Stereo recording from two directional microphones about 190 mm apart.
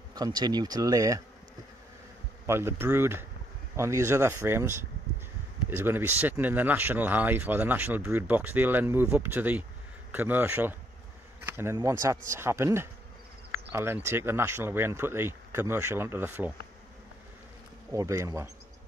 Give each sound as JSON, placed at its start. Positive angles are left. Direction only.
{"t": 0.1, "sound": "speech", "side_deg": -20}
{"t": 2.4, "sound": "speech", "side_deg": -15}
{"t": 17.9, "sound": "speech", "side_deg": -15}